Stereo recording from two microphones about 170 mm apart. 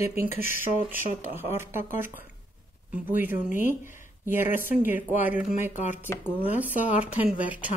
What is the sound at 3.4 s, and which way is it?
Speech, 50° left (ahead or behind).